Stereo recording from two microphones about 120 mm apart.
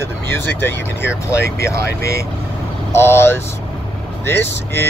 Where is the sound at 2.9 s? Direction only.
20° left (ahead or behind).